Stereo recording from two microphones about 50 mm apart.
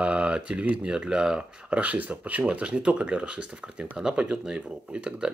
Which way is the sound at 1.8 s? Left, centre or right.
Right.